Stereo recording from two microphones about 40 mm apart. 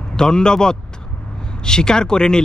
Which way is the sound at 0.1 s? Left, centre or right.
Centre.